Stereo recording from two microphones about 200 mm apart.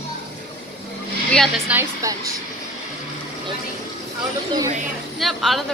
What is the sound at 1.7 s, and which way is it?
Speech, 15° right (ahead or behind).